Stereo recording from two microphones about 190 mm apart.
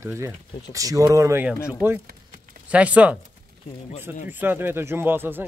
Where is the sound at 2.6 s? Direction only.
5° right (ahead or behind).